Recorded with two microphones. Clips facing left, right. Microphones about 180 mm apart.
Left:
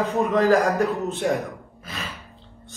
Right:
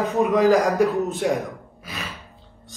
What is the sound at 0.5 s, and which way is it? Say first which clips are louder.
Speech: right 2 dB; 15° right (ahead or behind).